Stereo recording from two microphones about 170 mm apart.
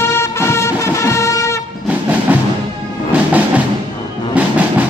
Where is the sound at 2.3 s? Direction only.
10° right (ahead or behind).